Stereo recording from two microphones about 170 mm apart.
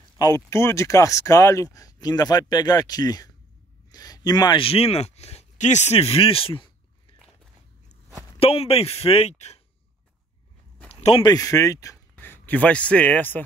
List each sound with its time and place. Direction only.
0.2 s speech: 15° left (ahead or behind)
8.4 s speech: 35° left (ahead or behind)
10.9 s a sound: 35° left (ahead or behind)
11.2 s a man's voice: 20° left (ahead or behind)